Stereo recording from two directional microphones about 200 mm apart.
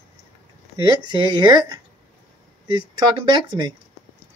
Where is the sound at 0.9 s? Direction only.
20° right (ahead or behind).